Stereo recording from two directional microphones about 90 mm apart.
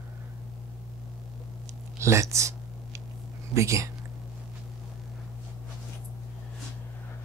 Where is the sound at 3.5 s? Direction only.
35° right (ahead or behind).